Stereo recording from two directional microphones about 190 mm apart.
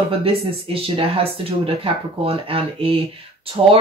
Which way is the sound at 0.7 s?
30° right (ahead or behind).